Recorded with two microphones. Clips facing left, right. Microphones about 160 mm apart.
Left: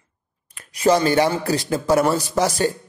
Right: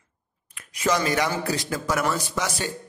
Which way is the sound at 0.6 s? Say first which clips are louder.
Left 7 dB; 35° left (ahead or behind).